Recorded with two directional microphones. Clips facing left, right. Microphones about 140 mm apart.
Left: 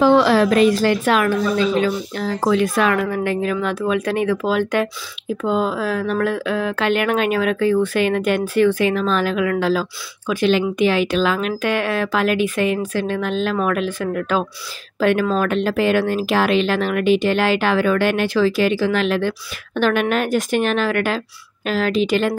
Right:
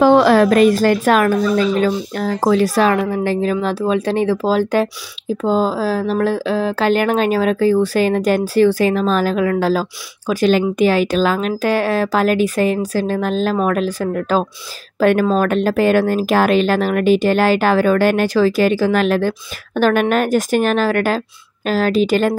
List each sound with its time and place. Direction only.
0.0 s speech: 45° right (ahead or behind)